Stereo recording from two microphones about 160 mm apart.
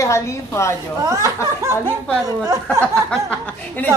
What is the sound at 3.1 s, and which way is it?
Speech, 10° left (ahead or behind).